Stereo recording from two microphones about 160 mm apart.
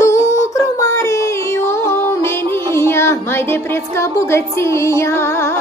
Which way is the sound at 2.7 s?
15° left (ahead or behind).